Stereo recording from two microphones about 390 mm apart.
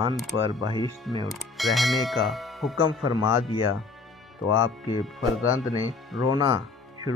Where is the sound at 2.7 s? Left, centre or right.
Left.